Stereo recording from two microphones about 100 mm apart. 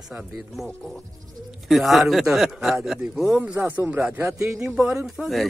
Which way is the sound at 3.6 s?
20° right (ahead or behind).